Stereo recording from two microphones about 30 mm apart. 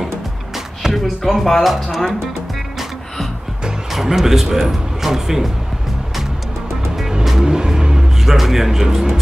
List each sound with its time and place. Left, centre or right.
0.9 s speech: centre
3.9 s speech: centre
7.4 s vehicle: right
8.3 s speech: centre